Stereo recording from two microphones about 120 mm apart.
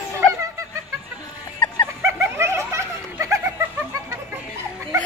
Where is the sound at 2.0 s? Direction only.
20° right (ahead or behind).